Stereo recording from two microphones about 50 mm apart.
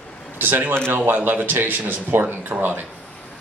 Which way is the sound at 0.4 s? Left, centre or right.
Right.